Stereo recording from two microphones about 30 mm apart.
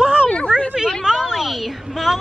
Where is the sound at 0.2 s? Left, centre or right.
Left.